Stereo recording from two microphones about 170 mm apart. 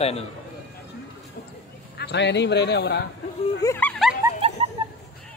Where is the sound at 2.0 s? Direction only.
85° left.